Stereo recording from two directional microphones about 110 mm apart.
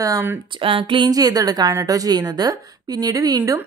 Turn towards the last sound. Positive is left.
turn(degrees=-35)  # may be behind; listen again after turning